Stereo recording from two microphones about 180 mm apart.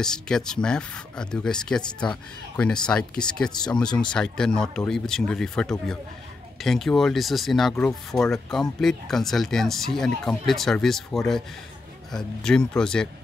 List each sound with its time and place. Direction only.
0.0 s speech: 5° left (ahead or behind)